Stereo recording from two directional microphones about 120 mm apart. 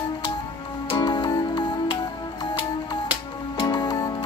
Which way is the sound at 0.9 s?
40° left (ahead or behind).